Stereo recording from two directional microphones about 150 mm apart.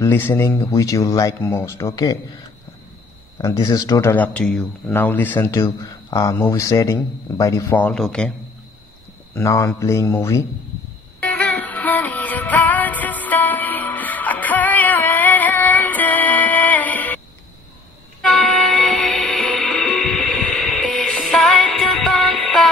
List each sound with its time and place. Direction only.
0.0 s speech: 15° left (ahead or behind)
3.3 s speech: 20° left (ahead or behind)
7.8 s a man's voice: 5° left (ahead or behind)
9.3 s speech: 20° left (ahead or behind)
11.1 s music: 10° left (ahead or behind)
18.2 s music: 5° left (ahead or behind)